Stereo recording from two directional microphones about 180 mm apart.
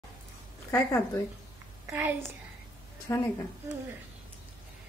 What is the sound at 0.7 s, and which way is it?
Speech, 20° left (ahead or behind).